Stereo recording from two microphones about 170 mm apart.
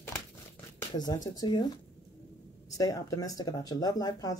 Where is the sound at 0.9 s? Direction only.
25° left (ahead or behind).